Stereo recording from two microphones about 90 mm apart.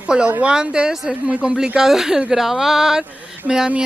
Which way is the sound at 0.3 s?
10° right (ahead or behind).